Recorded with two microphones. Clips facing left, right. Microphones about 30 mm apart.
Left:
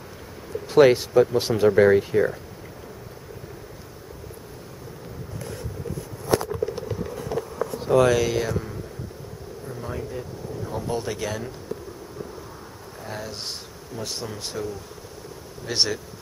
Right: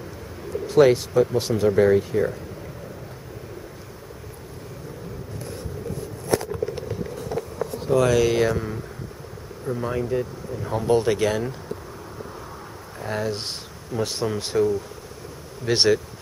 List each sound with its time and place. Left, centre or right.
0.7 s speech: left
8.0 s speech: centre
8.3 s speech: centre
9.7 s speech: right
12.9 s speech: centre
15.7 s speech: centre